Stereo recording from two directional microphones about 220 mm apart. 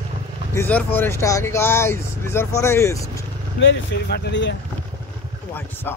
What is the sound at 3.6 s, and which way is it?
Speech, 50° left (ahead or behind).